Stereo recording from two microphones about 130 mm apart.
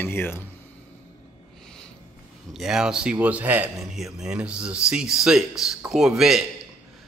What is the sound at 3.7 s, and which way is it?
Speech, centre (ahead or behind).